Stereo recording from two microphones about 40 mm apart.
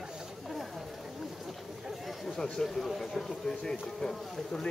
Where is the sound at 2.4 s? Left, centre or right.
Centre.